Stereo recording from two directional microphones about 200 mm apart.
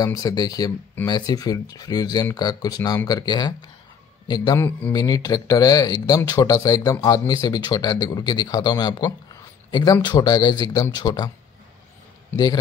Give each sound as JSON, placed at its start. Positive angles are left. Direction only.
{"t": 0.0, "sound": "speech", "side_deg": 20}
{"t": 4.6, "sound": "speech", "side_deg": 5}
{"t": 4.9, "sound": "speech", "side_deg": 20}